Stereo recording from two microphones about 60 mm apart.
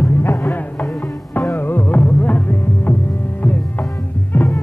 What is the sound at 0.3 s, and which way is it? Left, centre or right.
Music, left.